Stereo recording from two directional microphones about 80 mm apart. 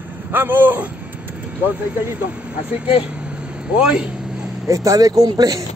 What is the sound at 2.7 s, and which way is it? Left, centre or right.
Vehicle, centre.